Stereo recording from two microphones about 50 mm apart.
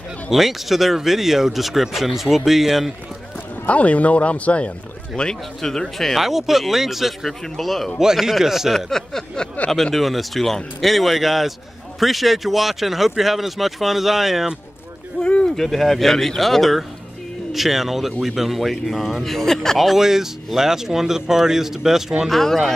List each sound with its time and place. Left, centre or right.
0.3 s speech: centre
3.6 s speech: left; by 7.9 s centre
8.0 s speech: centre
8.7 s speech: centre
9.9 s speech: centre
15.2 s a sound: left
15.5 s speech: centre
19.2 s speech: centre
22.3 s speech: centre